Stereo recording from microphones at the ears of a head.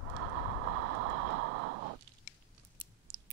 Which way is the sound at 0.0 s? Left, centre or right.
Right.